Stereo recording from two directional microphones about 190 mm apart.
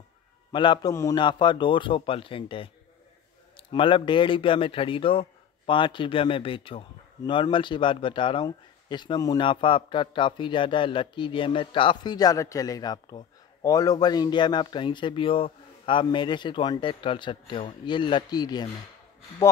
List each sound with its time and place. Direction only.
0.5 s speech: 25° left (ahead or behind)